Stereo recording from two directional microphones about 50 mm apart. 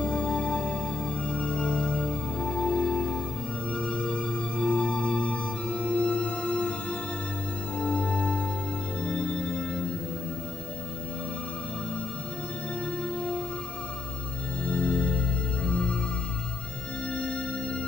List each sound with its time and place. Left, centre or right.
0.0 s music: left
9.0 s organ: centre
14.7 s music: centre
17.1 s music: centre